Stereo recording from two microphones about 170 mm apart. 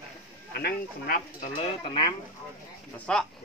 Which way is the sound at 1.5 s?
35° left (ahead or behind).